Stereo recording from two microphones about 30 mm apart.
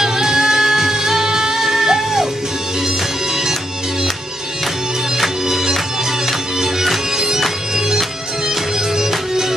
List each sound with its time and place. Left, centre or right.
0.0 s music: centre
6.6 s bagpipes: centre
8.9 s music: centre